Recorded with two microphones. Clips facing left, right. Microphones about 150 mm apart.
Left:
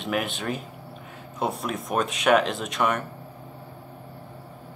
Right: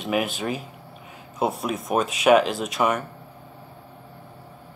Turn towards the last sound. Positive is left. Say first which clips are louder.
# right 2 dB
turn(degrees=0)  # may be behind; listen again after turning